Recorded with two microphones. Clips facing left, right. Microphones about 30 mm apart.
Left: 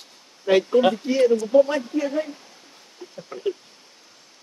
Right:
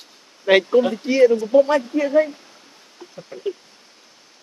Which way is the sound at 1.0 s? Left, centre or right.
Right.